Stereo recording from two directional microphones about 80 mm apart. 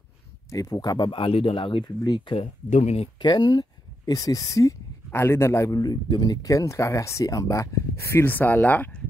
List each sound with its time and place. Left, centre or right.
0.5 s speech: left
2.0 s speech: left
5.8 s speech: left